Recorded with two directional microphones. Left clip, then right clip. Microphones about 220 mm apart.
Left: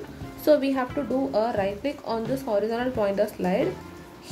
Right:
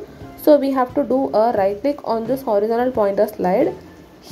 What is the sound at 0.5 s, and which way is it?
A woman's voice, 15° right (ahead or behind).